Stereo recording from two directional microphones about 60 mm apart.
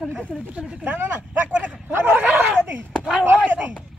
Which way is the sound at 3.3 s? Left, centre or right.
Right.